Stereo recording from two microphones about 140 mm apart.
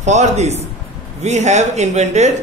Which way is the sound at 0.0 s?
55° right (ahead or behind).